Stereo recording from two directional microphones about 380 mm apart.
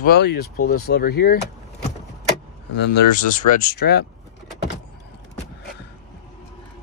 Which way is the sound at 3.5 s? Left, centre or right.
Left.